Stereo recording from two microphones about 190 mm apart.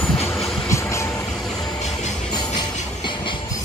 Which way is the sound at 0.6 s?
15° left (ahead or behind).